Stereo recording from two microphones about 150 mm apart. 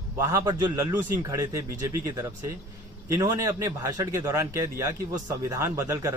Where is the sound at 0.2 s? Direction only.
25° right (ahead or behind).